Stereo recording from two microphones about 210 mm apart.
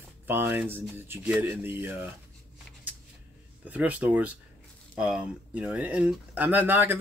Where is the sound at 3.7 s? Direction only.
5° right (ahead or behind).